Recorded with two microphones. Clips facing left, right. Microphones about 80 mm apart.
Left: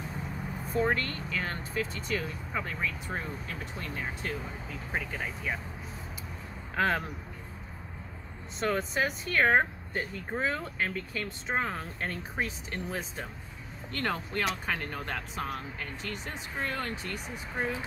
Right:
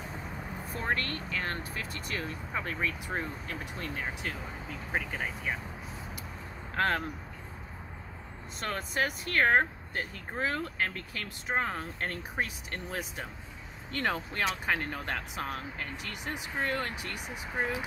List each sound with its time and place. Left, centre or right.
0.7 s speech: centre
6.7 s a sound: centre
8.5 s speech: centre